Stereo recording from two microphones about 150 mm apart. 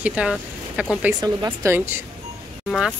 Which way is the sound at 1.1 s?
25° right (ahead or behind).